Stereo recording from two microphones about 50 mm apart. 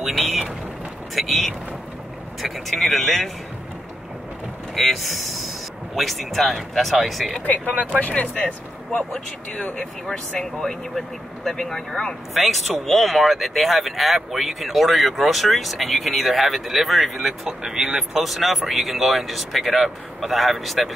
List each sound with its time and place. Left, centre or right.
0.0 s rain: centre
1.1 s speech: centre
2.7 s speech: centre
4.7 s speech: centre
7.4 s speech: left; by 17.4 s centre
17.5 s speech: centre